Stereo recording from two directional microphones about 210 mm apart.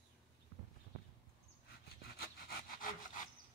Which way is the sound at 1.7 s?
45° left (ahead or behind).